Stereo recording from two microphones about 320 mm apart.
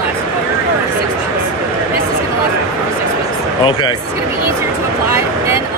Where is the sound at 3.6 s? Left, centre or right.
Centre.